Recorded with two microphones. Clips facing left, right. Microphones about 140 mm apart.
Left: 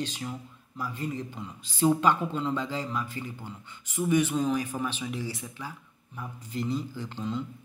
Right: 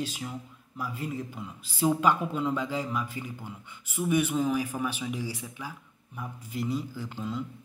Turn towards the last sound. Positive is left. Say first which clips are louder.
# left 1 dB
turn(degrees=-5)  # may be behind; listen again after turning